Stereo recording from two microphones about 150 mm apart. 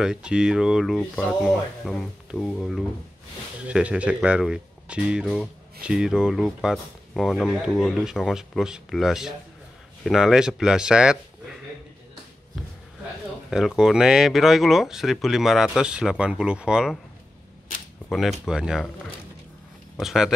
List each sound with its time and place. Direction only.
0.0 s speech: 5° right (ahead or behind)
13.5 s speech: 5° right (ahead or behind)
18.1 s speech: centre (ahead or behind)
20.0 s speech: 5° right (ahead or behind)